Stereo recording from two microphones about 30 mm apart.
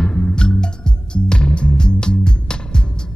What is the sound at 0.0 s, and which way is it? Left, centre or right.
Music, left.